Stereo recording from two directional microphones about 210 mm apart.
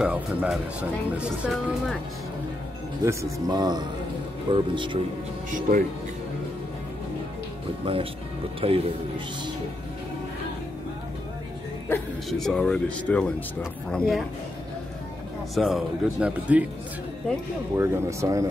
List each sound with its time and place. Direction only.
0.0 s speech: 5° right (ahead or behind)
3.0 s speech: 15° right (ahead or behind)
5.5 s speech: 40° right (ahead or behind)
7.8 s speech: 25° right (ahead or behind)
11.9 s speech: centre (ahead or behind)
15.5 s speech: centre (ahead or behind)
17.7 s speech: 10° right (ahead or behind)